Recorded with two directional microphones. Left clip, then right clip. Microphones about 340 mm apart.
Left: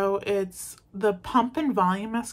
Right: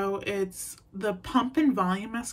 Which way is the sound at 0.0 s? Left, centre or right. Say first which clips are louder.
Left 4 dB; centre.